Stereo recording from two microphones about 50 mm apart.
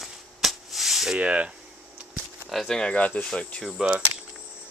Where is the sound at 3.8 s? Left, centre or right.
Right.